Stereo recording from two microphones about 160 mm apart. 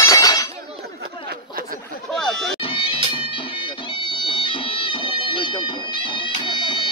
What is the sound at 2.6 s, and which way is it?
Music, 30° left (ahead or behind).